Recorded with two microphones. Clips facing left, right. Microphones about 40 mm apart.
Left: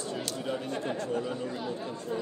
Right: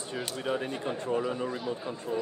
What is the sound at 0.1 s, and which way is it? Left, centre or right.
Speech, right.